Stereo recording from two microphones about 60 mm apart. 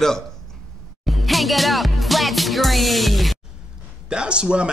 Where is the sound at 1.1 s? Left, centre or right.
Centre.